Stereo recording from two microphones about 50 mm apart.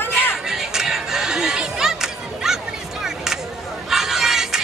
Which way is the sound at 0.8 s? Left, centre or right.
Centre.